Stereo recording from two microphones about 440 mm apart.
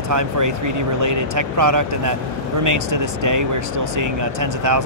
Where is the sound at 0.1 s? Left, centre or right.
Right.